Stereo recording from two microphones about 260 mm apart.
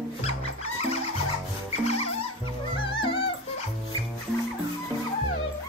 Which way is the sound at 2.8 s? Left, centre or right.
Centre.